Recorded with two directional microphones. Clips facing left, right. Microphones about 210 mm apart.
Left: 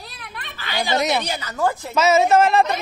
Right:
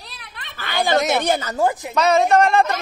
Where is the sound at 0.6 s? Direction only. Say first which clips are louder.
Right 3 dB; 50° right (ahead or behind).